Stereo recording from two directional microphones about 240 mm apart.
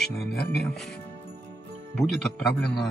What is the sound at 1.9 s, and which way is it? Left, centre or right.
Speech, centre.